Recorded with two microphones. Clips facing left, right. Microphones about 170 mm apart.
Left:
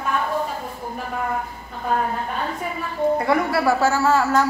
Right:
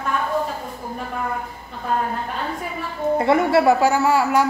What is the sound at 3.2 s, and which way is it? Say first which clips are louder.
Speech: right 4 dB; 25° right (ahead or behind).